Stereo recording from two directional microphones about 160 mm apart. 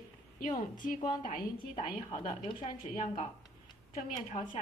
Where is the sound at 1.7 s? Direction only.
35° left (ahead or behind).